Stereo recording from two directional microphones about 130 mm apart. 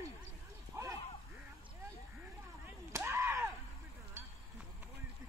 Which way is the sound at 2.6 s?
20° right (ahead or behind).